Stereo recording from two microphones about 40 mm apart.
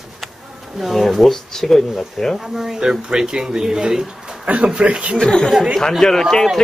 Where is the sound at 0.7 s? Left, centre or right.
Centre.